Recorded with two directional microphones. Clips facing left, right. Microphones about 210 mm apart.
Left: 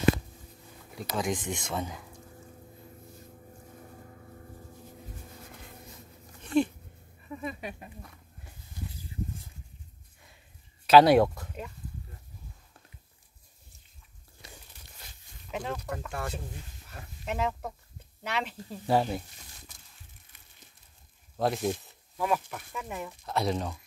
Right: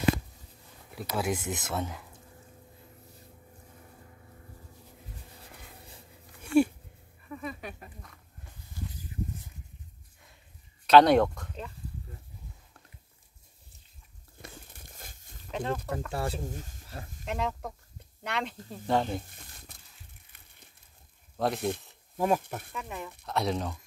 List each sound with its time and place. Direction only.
0.9 s speech: 5° right (ahead or behind)
6.4 s a sound: 10° right (ahead or behind)
7.2 s a sound: 20° left (ahead or behind)
10.9 s speech: 5° left (ahead or behind)
14.4 s crumpling: 50° right (ahead or behind)
15.5 s speech: 5° left (ahead or behind)
16.1 s speech: 30° right (ahead or behind)
17.2 s speech: 5° left (ahead or behind)
19.2 s crumpling: 55° right (ahead or behind)
21.4 s speech: centre (ahead or behind)
22.2 s speech: 45° right (ahead or behind)
22.7 s speech: 5° left (ahead or behind)